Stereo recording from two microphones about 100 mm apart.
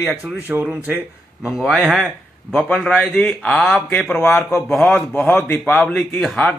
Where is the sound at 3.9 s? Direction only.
20° left (ahead or behind).